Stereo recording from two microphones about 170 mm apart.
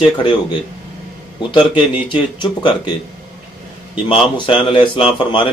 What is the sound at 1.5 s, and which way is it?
Speech, 30° left (ahead or behind).